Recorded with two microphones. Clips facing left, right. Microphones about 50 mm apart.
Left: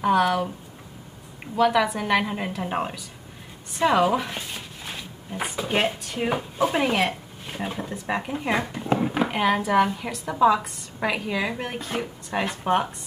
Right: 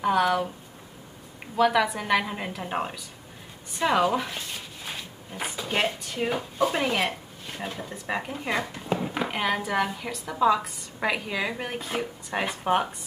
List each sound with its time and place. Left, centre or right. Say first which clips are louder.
0.0 s a woman's voice: left 2 dB; centre
1.6 s a woman's voice: left 2 dB; centre
4.8 s a sound: left 1 dB; centre
5.6 s speech: left 3 dB; centre
7.8 s a woman's voice: left 3 dB; centre
8.2 s speech: left 3 dB; centre
9.1 s a woman's voice: left 3 dB; centre